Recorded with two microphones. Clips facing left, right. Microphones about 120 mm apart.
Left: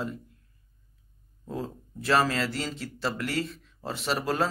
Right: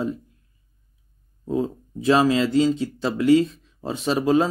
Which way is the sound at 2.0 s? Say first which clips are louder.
Right 7 dB; 15° right (ahead or behind).